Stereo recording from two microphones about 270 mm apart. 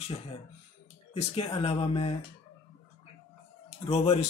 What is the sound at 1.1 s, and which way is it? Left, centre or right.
Speech, left.